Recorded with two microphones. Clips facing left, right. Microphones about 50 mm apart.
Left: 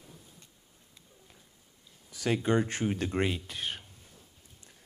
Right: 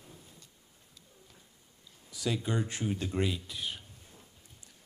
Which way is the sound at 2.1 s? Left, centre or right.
Left.